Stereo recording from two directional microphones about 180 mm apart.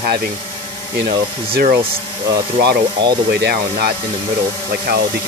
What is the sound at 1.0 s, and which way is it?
Speech, 55° right (ahead or behind).